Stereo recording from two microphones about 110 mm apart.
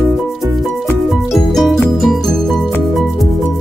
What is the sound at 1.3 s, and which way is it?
Music, centre (ahead or behind).